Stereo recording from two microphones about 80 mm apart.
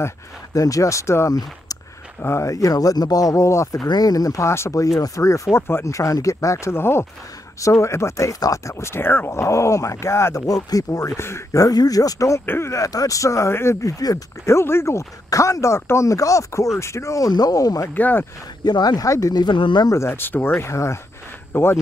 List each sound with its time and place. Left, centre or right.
0.6 s speech: left
3.8 s speech: left
10.4 s speech: left
11.1 s speech: left
12.4 s speech: left
15.2 s speech: left
17.3 s speech: left
17.9 s speech: left
18.6 s speech: left
19.0 s speech: left
19.4 s speech: left
19.9 s speech: left